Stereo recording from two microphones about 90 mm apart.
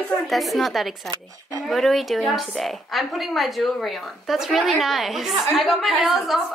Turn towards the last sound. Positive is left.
turn(degrees=0)  # may be behind; listen again after turning